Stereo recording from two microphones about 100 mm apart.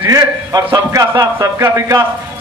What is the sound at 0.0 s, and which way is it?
A man's voice, 35° right (ahead or behind).